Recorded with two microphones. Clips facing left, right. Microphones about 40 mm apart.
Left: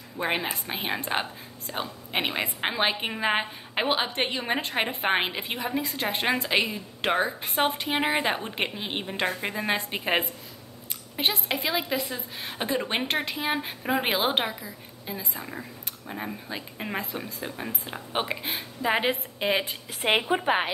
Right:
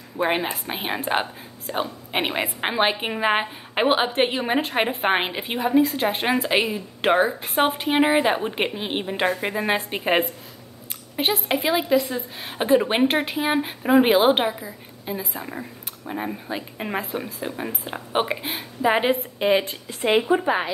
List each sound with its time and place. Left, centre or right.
0.2 s a woman's voice: centre
20.0 s speech: left